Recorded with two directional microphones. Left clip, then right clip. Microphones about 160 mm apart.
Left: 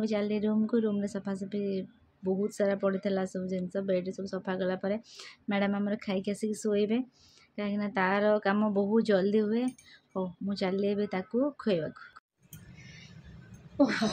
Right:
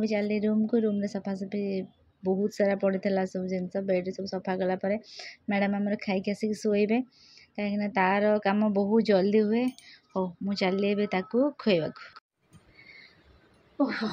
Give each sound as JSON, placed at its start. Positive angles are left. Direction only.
{"t": 0.0, "sound": "speech", "side_deg": -10}
{"t": 13.7, "sound": "speech", "side_deg": 15}